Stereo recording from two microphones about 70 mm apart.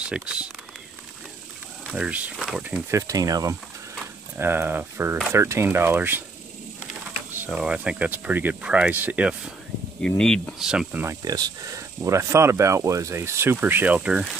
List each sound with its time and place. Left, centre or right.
0.0 s speech: centre
2.0 s speech: centre
2.9 s speech: right
4.4 s speech: right
7.5 s speech: centre
8.1 s speech: right
8.6 s speech: centre
10.0 s speech: centre
10.6 s speech: centre
11.2 s speech: right
12.0 s speech: right
13.1 s speech: right
13.6 s speech: right
14.0 s speech: centre